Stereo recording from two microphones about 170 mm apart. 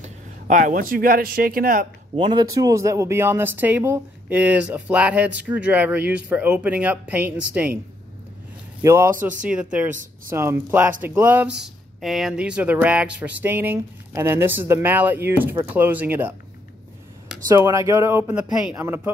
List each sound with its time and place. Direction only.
0.0 s speech: 50° right (ahead or behind)
2.1 s speech: 30° right (ahead or behind)
2.4 s speech: 20° right (ahead or behind)
8.8 s speech: 15° right (ahead or behind)
9.1 s speech: 50° right (ahead or behind)
9.5 s speech: 5° right (ahead or behind)
17.5 s speech: 15° right (ahead or behind)